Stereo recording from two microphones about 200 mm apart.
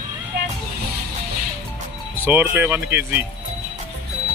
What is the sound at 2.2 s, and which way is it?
Speech, 10° right (ahead or behind).